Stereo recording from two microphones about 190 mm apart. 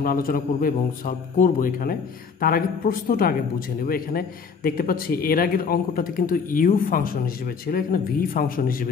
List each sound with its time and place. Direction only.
0.0 s a man's voice: 50° left (ahead or behind)